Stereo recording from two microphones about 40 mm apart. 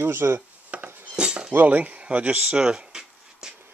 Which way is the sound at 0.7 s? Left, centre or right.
Right.